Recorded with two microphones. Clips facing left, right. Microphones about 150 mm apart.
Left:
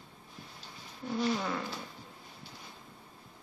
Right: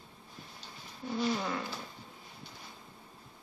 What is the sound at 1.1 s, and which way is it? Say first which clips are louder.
Speech: left 1 dB; centre (ahead or behind).